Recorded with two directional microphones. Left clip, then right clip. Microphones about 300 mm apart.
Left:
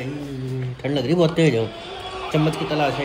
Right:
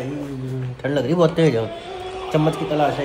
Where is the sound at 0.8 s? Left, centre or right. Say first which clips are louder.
Right 2 dB; left.